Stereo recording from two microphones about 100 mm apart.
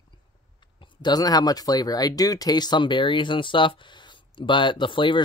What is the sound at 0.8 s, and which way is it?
Speech, 45° left (ahead or behind).